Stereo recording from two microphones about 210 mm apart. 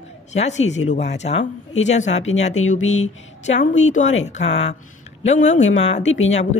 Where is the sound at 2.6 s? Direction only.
75° left (ahead or behind).